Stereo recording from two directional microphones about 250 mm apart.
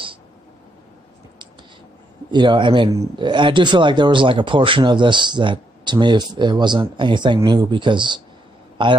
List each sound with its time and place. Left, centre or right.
2.3 s speech: centre